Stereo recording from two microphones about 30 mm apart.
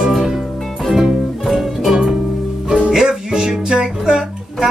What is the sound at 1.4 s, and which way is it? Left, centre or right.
Music, centre.